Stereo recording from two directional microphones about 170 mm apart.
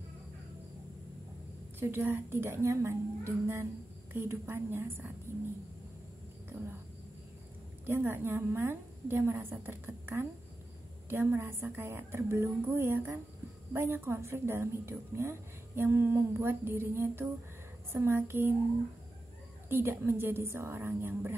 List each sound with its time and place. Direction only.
1.8 s a woman's voice: 10° right (ahead or behind)
6.5 s a woman's voice: 15° right (ahead or behind)
7.8 s a woman's voice: 10° right (ahead or behind)
19.7 s a woman's voice: 15° right (ahead or behind)